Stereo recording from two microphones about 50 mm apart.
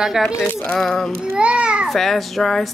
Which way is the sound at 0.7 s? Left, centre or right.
Centre.